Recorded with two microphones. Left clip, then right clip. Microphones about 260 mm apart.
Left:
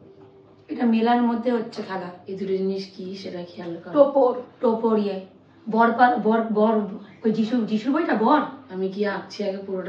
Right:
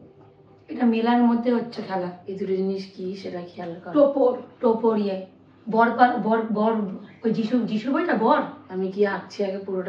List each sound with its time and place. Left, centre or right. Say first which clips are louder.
0.7 s a woman's voice: left 1 dB; centre
2.2 s a woman's voice: even; centre
2.8 s speech: right 1 dB; right
3.6 s a woman's voice: left 1 dB; centre